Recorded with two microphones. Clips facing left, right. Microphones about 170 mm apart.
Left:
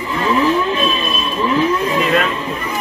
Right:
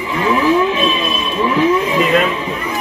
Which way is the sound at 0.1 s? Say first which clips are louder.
Right 2 dB; 5° right (ahead or behind).